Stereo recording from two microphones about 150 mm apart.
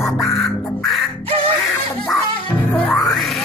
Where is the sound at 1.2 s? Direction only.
40° right (ahead or behind).